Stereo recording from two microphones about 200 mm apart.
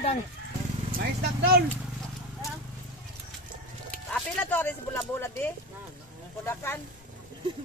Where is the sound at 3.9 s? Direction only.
5° left (ahead or behind).